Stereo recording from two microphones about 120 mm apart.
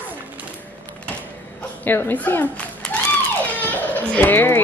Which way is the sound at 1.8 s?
15° left (ahead or behind).